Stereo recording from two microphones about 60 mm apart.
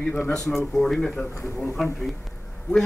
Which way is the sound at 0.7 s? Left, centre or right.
Centre.